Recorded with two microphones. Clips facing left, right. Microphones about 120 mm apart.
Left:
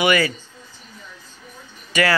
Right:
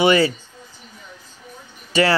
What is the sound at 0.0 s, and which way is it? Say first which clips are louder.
Speech: right 3 dB; 25° right (ahead or behind).